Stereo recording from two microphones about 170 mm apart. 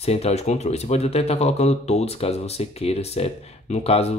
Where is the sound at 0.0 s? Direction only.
40° left (ahead or behind).